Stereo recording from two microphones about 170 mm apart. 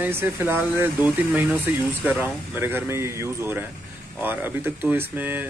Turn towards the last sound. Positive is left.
turn(degrees=-10)  # may be behind; listen again after turning